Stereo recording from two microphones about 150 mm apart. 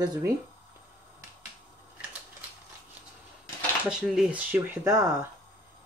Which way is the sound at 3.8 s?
5° right (ahead or behind).